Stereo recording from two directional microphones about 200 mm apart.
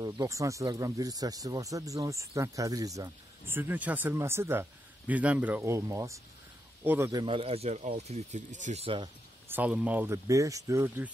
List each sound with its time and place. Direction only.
0.0 s speech: 15° right (ahead or behind)
9.5 s speech: 5° right (ahead or behind)